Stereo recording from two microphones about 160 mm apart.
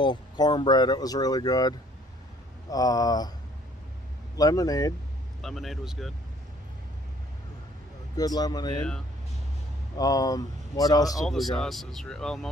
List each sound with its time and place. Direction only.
0.0 s speech: 30° left (ahead or behind)
4.4 s speech: 20° left (ahead or behind)
5.4 s speech: centre (ahead or behind)
8.2 s speech: 25° left (ahead or behind)
9.9 s speech: 25° left (ahead or behind)
11.2 s speech: centre (ahead or behind)